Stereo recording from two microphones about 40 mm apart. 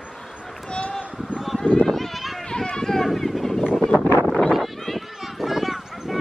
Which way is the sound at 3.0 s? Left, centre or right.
Centre.